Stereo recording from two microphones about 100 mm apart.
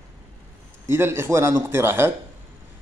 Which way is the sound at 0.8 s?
25° right (ahead or behind).